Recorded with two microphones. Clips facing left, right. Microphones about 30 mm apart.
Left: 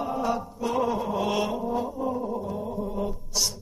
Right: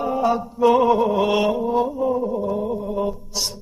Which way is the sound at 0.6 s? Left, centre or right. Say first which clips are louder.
Right 13 dB; right.